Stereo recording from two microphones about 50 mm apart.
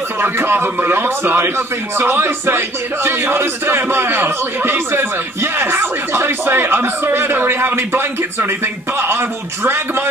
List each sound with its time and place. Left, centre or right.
0.2 s speech: right